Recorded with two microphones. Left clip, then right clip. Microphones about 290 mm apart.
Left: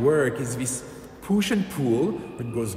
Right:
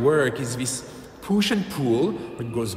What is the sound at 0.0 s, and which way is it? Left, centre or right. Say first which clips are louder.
A man's voice: right 1 dB; centre.